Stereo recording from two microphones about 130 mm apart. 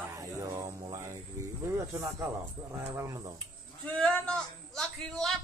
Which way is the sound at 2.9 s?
25° right (ahead or behind).